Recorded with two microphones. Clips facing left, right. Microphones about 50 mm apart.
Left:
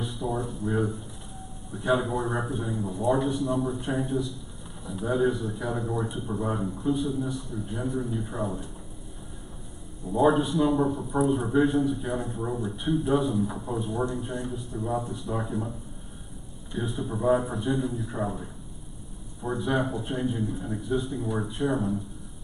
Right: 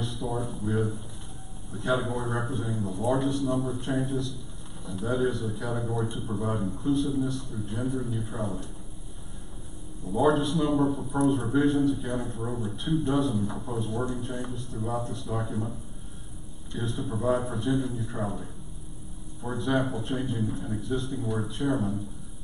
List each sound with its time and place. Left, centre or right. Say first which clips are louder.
0.0 s a sound: left 1 dB; centre
0.7 s a man's voice: left 2 dB; centre
10.0 s a man's voice: left 1 dB; centre
16.7 s a man's voice: left 1 dB; centre